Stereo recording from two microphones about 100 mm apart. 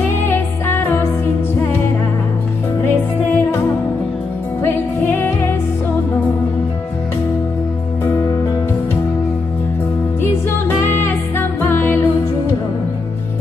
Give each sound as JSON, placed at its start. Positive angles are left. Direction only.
{"t": 0.3, "sound": "music", "side_deg": 20}
{"t": 3.3, "sound": "music", "side_deg": 20}
{"t": 5.0, "sound": "music", "side_deg": 20}
{"t": 8.0, "sound": "music", "side_deg": 30}
{"t": 10.8, "sound": "music", "side_deg": 20}